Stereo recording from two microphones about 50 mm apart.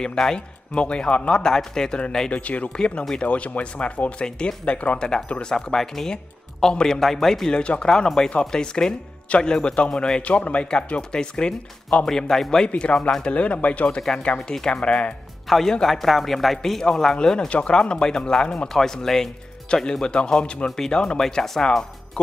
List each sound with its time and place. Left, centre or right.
0.0 s speech: centre
1.4 s speech: centre
7.5 s speech: centre
10.2 s speech: left; by 12.6 s centre
12.6 s speech: left
14.1 s speech: centre
15.4 s speech: centre